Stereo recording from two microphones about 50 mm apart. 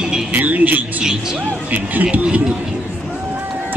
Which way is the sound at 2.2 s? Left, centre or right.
Right.